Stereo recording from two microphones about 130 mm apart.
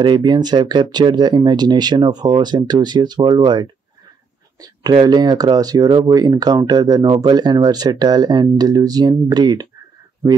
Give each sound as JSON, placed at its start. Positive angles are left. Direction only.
{"t": 0.0, "sound": "speech", "side_deg": -35}
{"t": 4.9, "sound": "speech", "side_deg": -35}